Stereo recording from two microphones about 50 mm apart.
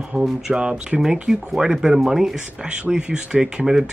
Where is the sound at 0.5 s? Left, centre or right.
Centre.